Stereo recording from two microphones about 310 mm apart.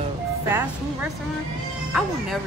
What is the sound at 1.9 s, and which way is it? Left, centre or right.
Speech, centre.